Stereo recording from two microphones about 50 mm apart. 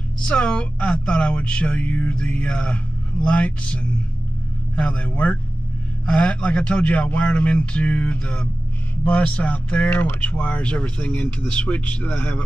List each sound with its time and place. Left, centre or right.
0.2 s speech: left